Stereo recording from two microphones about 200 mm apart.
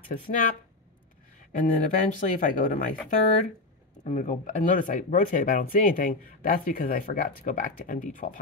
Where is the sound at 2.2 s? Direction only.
40° left (ahead or behind).